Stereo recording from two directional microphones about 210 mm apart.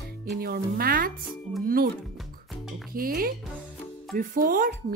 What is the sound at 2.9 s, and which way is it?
Speech, 45° right (ahead or behind).